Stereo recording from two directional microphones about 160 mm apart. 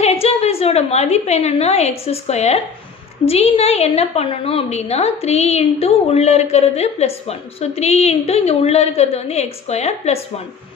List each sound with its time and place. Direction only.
0.0 s a woman's voice: 40° left (ahead or behind)